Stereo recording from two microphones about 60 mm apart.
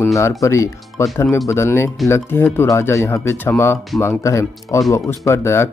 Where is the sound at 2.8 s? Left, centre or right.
Left.